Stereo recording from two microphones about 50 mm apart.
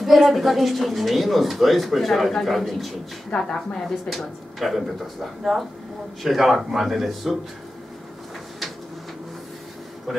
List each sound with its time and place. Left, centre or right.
0.0 s speech: centre
3.3 s a woman's voice: centre
4.1 s speech: centre